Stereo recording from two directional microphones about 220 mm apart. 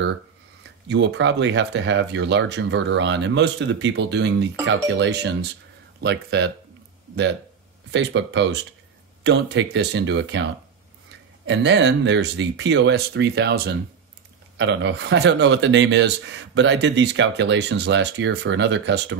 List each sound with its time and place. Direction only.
0.8 s speech: 55° right (ahead or behind)
7.9 s speech: 55° right (ahead or behind)